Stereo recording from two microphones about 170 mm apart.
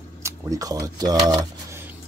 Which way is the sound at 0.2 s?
20° right (ahead or behind).